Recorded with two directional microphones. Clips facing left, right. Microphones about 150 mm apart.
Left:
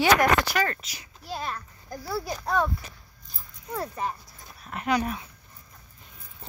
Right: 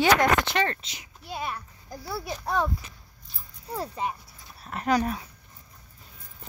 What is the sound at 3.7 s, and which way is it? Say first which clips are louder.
Speech: even; 15° right (ahead or behind).